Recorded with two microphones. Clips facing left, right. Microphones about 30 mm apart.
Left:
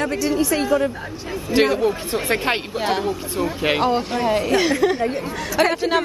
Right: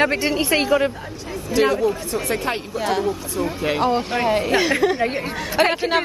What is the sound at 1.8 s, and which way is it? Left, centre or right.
Speech, left.